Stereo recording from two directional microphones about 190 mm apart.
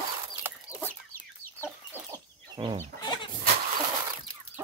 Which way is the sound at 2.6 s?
15° right (ahead or behind).